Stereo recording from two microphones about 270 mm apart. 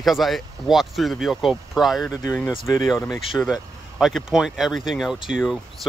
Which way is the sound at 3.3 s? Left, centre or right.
Centre.